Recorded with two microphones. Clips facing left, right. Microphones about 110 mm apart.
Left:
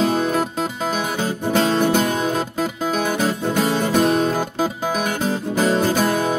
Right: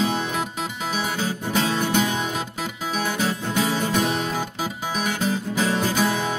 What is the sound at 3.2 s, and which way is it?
Music, 45° left (ahead or behind).